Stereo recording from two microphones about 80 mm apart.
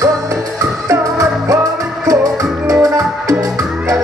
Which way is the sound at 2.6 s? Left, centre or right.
Right.